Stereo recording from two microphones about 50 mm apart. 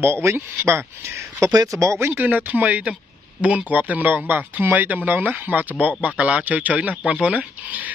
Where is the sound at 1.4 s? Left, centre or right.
Right.